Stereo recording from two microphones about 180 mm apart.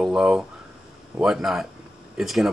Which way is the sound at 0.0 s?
5° right (ahead or behind).